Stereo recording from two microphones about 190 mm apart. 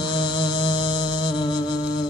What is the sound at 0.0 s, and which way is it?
Music, 25° left (ahead or behind).